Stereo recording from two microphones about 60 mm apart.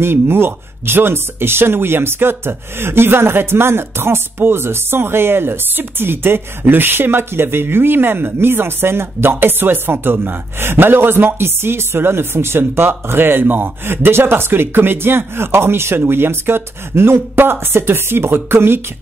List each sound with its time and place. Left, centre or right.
0.0 s speech: right